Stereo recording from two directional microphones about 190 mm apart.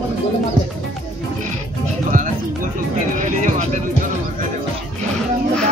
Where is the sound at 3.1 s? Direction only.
45° right (ahead or behind).